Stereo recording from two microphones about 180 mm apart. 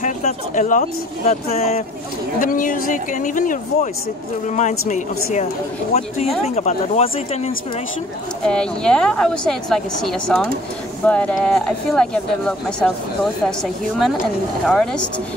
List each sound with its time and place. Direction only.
0.0 s speech: 45° left (ahead or behind)
2.4 s speech: 50° left (ahead or behind)
8.5 s speech: 5° left (ahead or behind)
14.7 s speech: centre (ahead or behind)